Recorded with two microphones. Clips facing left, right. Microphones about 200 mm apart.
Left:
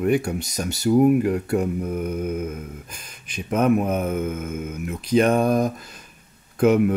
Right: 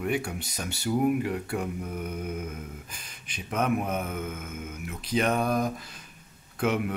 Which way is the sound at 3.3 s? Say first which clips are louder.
Left 8 dB; 45° left (ahead or behind).